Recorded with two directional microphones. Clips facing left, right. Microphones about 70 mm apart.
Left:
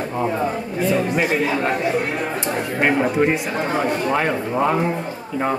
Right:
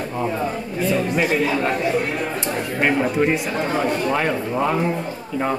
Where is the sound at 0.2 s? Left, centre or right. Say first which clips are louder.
Left 2 dB; left.